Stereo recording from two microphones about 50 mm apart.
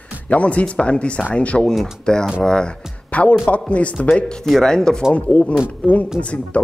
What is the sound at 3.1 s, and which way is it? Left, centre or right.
Music, left.